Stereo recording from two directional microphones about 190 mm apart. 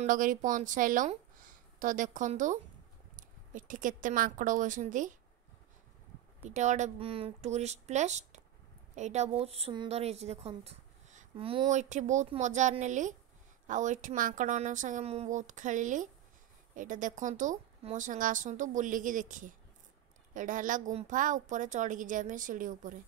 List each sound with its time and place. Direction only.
0.0 s a woman's voice: 45° right (ahead or behind)
6.4 s a woman's voice: 40° right (ahead or behind)